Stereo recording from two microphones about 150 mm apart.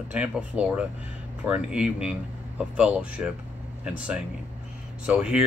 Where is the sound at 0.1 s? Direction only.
10° right (ahead or behind).